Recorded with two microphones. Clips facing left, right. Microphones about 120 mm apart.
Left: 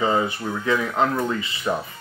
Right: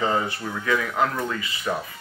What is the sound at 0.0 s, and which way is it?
Speech, 20° left (ahead or behind).